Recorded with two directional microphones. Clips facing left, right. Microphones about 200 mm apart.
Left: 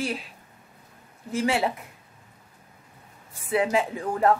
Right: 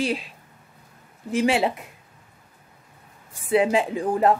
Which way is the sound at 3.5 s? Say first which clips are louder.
Right 4 dB; 20° right (ahead or behind).